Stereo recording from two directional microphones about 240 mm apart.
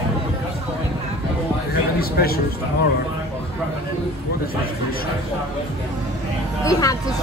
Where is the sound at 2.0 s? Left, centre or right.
Left.